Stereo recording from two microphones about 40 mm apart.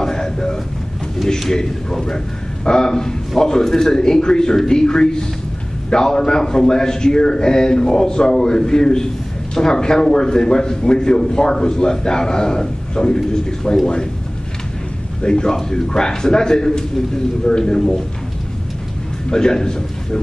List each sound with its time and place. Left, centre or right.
0.0 s a sound: centre
1.5 s a man's voice: centre
15.2 s a man's voice: centre
19.3 s a man's voice: centre